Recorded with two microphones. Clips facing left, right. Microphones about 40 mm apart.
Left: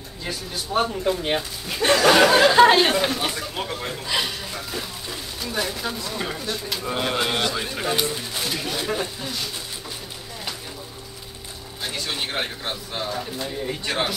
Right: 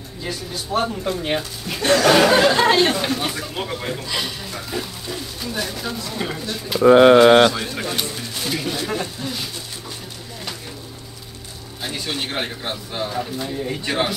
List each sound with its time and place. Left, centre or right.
0.2 s speech: centre
1.8 s speech: centre
4.1 s speech: centre
4.6 s a sound: centre
6.1 s speech: centre
6.8 s speech: right
7.5 s a sound: centre
8.5 s speech: centre
11.8 s speech: centre